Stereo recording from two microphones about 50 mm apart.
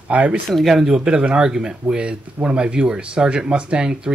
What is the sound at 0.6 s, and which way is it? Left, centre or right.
Speech, centre.